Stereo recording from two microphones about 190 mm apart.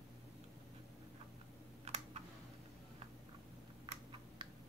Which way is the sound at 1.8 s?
35° right (ahead or behind).